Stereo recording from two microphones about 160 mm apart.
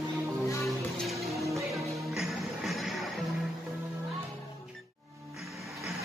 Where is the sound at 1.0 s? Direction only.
Centre (ahead or behind).